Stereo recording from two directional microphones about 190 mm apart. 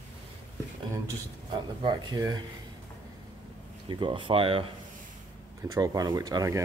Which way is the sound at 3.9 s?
25° right (ahead or behind).